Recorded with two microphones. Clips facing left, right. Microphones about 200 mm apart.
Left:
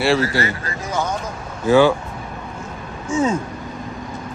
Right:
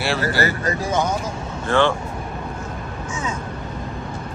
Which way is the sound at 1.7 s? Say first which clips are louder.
Left 5 dB; 5° left (ahead or behind).